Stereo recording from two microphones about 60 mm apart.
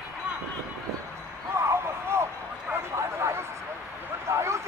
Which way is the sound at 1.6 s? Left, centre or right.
Right.